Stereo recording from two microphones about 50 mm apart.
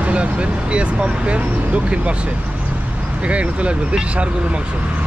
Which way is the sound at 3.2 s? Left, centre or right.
Right.